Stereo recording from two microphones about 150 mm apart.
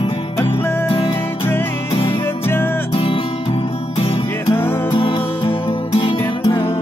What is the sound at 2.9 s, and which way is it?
Music, 35° left (ahead or behind).